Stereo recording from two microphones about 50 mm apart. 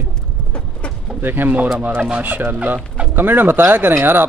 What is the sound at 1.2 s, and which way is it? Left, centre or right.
Speech, right.